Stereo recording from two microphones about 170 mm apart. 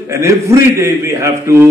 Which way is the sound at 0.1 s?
15° right (ahead or behind).